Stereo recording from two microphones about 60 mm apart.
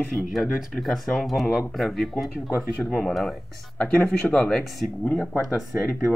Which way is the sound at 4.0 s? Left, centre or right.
Left.